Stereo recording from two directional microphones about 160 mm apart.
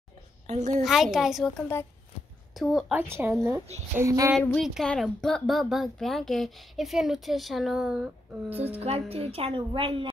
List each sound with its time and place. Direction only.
0.5 s a woman's voice: 45° right (ahead or behind)
0.8 s a woman's voice: centre (ahead or behind)
2.5 s a woman's voice: centre (ahead or behind)
3.0 s speech: 15° right (ahead or behind)
4.4 s a woman's voice: 5° left (ahead or behind)
8.7 s a woman's voice: 40° right (ahead or behind)